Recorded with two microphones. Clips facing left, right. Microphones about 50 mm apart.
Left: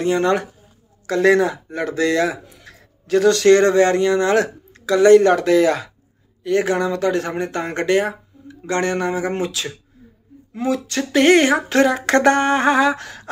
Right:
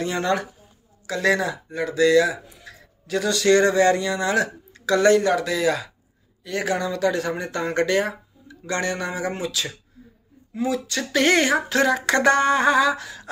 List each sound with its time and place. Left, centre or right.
0.0 s speech: left
1.7 s a man's voice: left
4.8 s speech: centre
5.1 s speech: left
6.4 s speech: left
10.5 s speech: left
12.9 s speech: left